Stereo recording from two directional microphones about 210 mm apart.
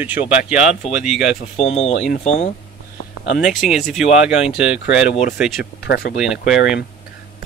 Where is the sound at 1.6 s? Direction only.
30° left (ahead or behind).